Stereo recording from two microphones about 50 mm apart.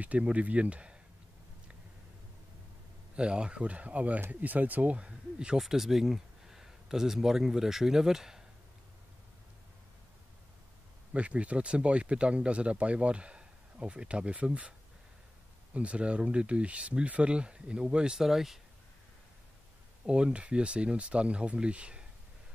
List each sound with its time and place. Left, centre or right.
0.0 s speech: right
3.2 s speech: right
5.6 s speech: centre
11.1 s speech: right
15.7 s speech: right; by 18.6 s centre
20.1 s speech: right